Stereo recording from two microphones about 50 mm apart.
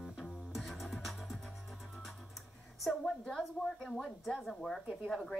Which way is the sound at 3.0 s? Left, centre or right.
Centre.